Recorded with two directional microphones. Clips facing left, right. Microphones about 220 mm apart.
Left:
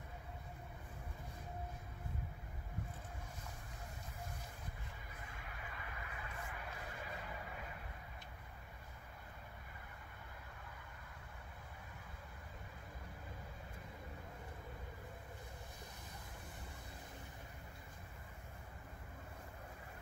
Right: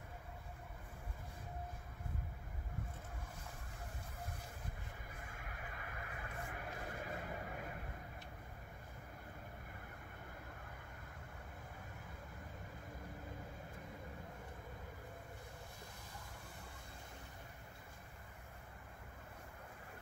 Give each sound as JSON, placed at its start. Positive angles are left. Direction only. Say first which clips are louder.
{"t": 5.4, "sound": "vehicle", "louder": "right 1 dB", "side_deg": -50}